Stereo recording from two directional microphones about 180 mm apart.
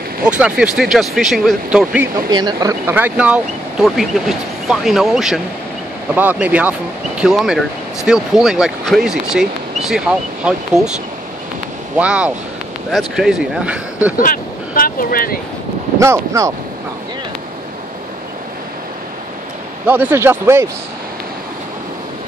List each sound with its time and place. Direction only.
0.2 s speech: 5° right (ahead or behind)
2.1 s speech: 20° right (ahead or behind)
2.9 s speech: 10° right (ahead or behind)
12.0 s speech: 5° right (ahead or behind)
14.1 s speech: 50° left (ahead or behind)
16.0 s speech: 15° right (ahead or behind)
19.9 s speech: 10° right (ahead or behind)